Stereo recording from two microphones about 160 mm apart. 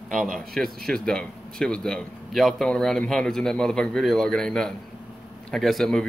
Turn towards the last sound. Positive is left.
turn(degrees=0)  # may be behind; listen again after turning